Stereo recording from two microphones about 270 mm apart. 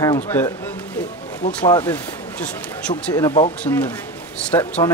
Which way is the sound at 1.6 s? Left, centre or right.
Centre.